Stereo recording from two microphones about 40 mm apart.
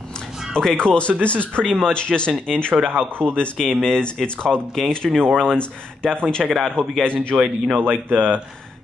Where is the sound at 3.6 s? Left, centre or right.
Centre; by 7.3 s left.